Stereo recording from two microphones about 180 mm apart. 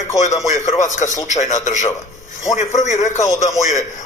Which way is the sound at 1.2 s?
40° left (ahead or behind).